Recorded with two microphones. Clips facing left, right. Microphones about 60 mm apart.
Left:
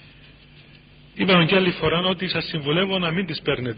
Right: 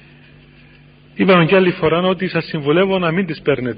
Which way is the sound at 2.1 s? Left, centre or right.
Right.